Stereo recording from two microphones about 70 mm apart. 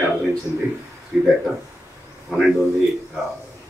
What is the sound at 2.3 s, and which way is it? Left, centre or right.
Speech, centre.